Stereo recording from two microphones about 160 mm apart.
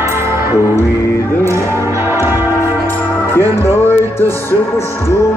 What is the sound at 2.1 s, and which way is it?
Music, 15° right (ahead or behind).